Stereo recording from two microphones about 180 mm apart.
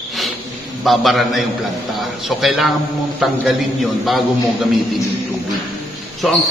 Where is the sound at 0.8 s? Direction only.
Centre (ahead or behind).